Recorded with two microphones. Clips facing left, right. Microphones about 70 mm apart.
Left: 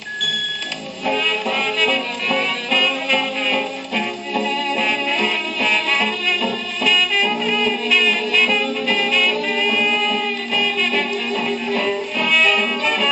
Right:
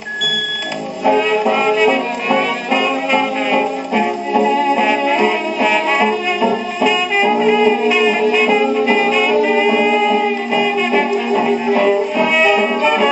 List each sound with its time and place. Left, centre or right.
1.0 s music: right